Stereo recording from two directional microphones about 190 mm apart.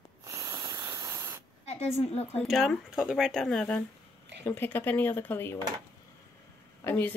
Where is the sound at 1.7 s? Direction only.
35° left (ahead or behind).